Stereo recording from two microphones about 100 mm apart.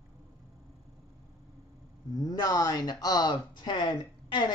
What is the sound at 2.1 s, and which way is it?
A man's voice, 40° left (ahead or behind).